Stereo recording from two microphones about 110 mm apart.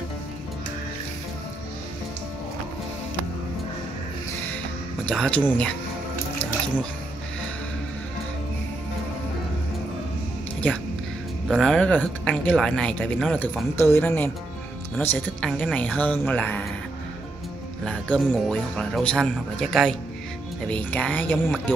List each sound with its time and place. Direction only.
5.0 s speech: 10° left (ahead or behind)
11.4 s speech: centre (ahead or behind)
17.8 s speech: 10° left (ahead or behind)